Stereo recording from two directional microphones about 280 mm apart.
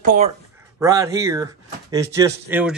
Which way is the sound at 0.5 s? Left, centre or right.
Centre.